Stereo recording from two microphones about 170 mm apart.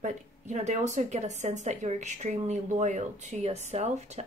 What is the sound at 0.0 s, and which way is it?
Speech, 45° right (ahead or behind).